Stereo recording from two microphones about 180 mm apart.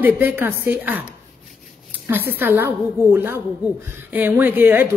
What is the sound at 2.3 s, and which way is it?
Speech, 10° right (ahead or behind).